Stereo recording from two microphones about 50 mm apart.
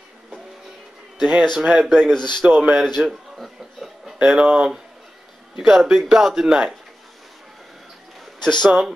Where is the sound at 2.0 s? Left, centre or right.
Centre.